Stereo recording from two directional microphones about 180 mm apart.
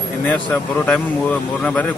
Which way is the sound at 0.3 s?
5° left (ahead or behind).